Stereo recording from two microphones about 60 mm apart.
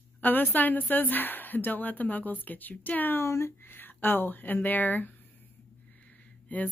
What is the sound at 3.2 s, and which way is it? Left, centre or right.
Speech, left.